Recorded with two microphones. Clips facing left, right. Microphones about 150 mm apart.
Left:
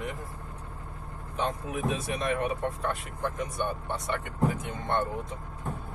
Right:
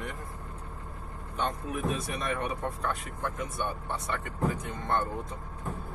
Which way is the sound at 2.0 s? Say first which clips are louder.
Left 3 dB; centre (ahead or behind).